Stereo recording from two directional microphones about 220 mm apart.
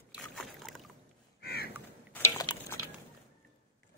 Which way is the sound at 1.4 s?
45° left (ahead or behind).